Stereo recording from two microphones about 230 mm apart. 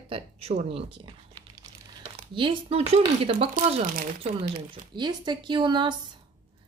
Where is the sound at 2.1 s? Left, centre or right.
Right.